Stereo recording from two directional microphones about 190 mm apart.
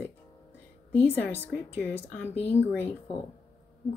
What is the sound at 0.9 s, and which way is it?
Speech, 10° left (ahead or behind).